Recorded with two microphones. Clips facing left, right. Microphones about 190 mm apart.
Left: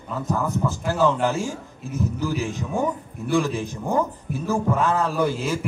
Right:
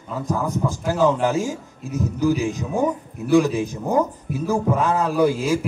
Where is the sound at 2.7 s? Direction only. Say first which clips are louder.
Right 2 dB; 15° right (ahead or behind).